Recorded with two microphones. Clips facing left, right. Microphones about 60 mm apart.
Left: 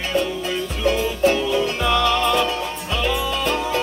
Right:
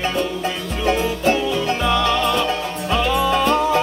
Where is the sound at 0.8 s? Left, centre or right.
Right.